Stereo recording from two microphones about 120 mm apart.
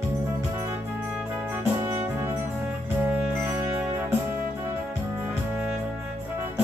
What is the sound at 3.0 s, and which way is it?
Music, 15° right (ahead or behind).